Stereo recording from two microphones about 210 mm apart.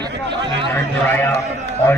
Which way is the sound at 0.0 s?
20° right (ahead or behind).